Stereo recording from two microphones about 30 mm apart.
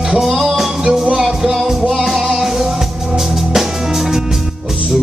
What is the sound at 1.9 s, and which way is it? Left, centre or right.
Music, centre.